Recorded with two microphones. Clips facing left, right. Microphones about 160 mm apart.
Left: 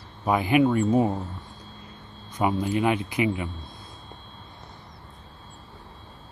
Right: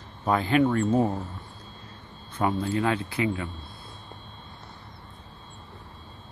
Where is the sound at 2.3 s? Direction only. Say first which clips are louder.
Left 1 dB; 15° left (ahead or behind).